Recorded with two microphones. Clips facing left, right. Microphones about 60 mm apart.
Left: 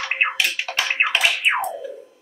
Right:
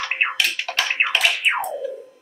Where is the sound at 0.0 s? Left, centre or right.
Centre.